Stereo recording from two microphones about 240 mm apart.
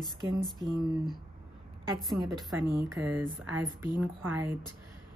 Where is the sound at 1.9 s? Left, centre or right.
Centre.